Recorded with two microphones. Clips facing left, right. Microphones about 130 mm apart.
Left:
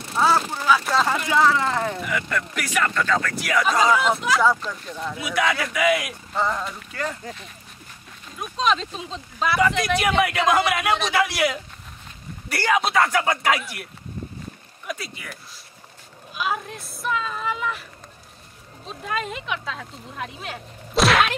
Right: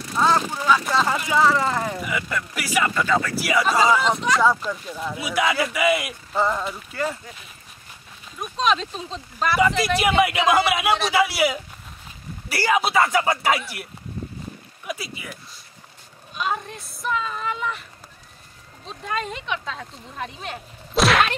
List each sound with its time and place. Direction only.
0.1 s speech: 5° left (ahead or behind)
8.4 s speech: centre (ahead or behind)
14.9 s speech: 5° right (ahead or behind)
18.9 s speech: centre (ahead or behind)